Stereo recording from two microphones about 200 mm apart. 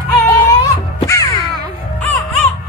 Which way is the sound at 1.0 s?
15° left (ahead or behind).